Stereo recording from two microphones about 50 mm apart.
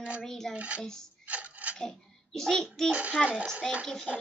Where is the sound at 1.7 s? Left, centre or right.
Centre.